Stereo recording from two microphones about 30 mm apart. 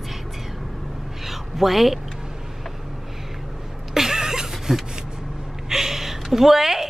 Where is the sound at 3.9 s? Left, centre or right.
Centre.